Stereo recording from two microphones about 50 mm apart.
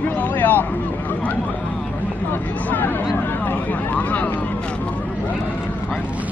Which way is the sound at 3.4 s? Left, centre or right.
Left.